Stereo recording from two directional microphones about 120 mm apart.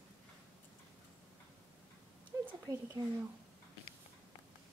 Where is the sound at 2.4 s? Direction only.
25° right (ahead or behind).